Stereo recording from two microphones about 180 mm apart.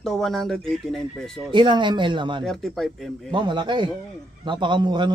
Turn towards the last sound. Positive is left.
turn(degrees=-25)  # may be behind; listen again after turning